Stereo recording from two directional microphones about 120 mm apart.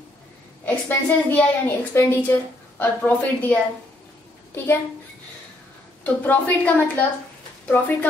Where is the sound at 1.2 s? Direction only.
15° left (ahead or behind).